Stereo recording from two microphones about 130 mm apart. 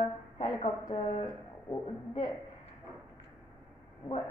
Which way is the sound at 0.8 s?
50° left (ahead or behind).